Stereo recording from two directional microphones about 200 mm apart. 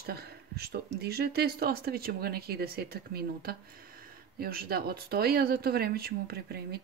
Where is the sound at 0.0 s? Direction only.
50° right (ahead or behind).